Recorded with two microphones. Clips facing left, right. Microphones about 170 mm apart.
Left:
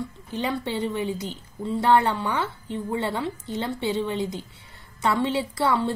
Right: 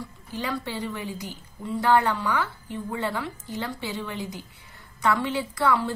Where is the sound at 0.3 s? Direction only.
25° left (ahead or behind).